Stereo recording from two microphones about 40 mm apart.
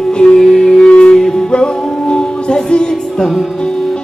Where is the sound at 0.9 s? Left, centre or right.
Left.